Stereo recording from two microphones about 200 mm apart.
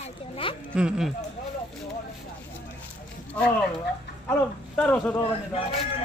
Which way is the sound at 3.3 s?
5° left (ahead or behind).